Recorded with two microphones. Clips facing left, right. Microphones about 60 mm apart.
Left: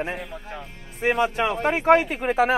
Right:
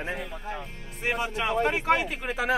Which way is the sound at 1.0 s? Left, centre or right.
Left.